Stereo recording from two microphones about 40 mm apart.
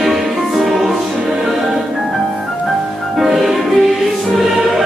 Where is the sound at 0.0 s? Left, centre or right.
Centre.